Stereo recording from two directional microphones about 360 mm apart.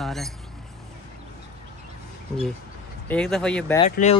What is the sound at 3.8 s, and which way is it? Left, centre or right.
Speech, centre.